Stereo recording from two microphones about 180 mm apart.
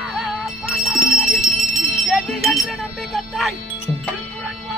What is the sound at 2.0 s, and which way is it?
Speech, centre (ahead or behind).